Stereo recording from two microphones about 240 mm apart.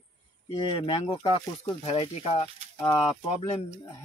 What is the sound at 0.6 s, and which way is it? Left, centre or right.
Speech, left.